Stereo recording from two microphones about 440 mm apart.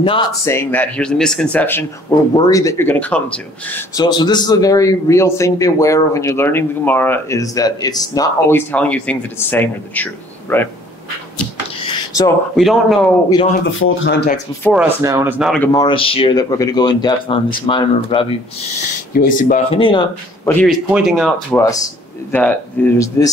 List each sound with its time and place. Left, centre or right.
0.0 s speech: centre
12.2 s speech: centre
13.7 s speech: left
14.6 s speech: centre
20.6 s speech: centre